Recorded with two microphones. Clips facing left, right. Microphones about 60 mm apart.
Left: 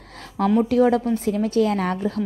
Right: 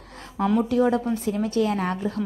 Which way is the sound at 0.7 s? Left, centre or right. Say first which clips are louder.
Left 3 dB; left.